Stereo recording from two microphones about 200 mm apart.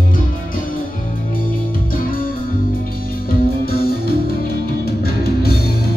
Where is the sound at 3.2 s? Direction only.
50° left (ahead or behind).